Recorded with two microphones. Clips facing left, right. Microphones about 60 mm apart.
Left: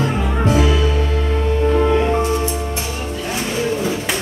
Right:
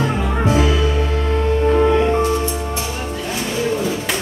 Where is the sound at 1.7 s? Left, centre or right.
Centre.